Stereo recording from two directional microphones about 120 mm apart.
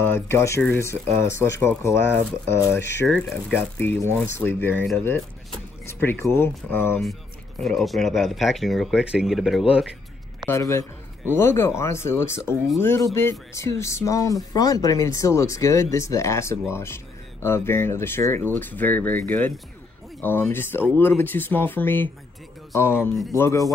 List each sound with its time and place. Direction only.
0.0 s speech: 20° left (ahead or behind)
7.6 s speech: centre (ahead or behind)
10.4 s speech: 25° left (ahead or behind)